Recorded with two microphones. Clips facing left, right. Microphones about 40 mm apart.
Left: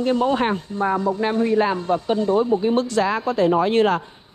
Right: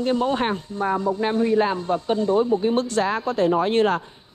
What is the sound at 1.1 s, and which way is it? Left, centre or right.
Speech, left.